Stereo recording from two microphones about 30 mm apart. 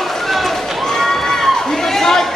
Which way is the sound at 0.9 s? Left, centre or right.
Centre.